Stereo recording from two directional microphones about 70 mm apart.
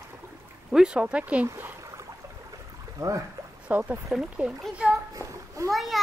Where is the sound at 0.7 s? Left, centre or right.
Centre.